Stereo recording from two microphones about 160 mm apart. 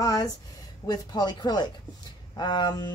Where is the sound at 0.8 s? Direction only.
25° left (ahead or behind).